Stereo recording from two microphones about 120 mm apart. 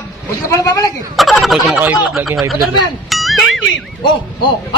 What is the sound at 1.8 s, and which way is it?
Speech, 15° right (ahead or behind).